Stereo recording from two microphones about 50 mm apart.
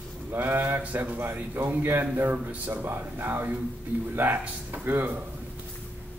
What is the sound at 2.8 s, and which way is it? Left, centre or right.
A man's voice, right.